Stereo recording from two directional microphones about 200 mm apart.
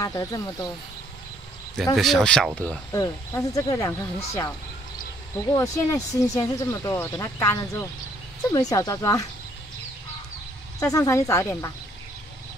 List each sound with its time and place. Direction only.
0.0 s speech: 15° left (ahead or behind)
2.0 s speech: centre (ahead or behind)
2.9 s speech: 15° left (ahead or behind)
10.8 s speech: 15° left (ahead or behind)